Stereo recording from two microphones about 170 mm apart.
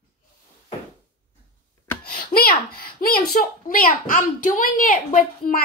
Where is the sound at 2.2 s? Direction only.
65° left (ahead or behind).